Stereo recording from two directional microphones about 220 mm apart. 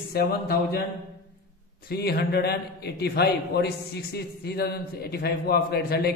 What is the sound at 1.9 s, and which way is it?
A man's voice, 45° left (ahead or behind).